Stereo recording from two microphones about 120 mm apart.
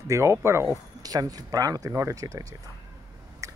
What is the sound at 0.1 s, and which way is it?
Speech, 25° right (ahead or behind).